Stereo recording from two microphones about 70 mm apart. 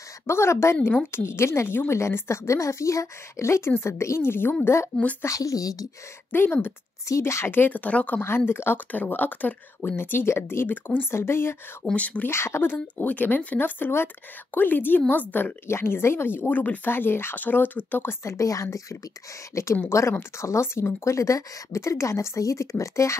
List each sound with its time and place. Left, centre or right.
0.3 s speech: left
5.2 s a woman's voice: left
6.3 s speech: left
7.1 s speech: left
8.5 s speech: left
10.7 s speech: left
11.8 s speech: centre
12.3 s speech: left
12.7 s speech: left
16.9 s speech: left
18.2 s speech: left